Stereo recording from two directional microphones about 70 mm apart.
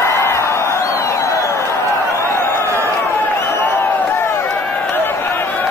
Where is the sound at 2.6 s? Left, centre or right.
Right.